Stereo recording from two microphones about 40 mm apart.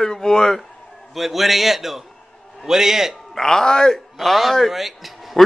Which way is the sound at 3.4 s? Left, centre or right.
Centre.